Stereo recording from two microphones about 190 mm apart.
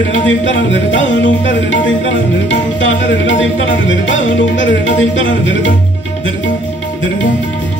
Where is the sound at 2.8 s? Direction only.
75° left (ahead or behind).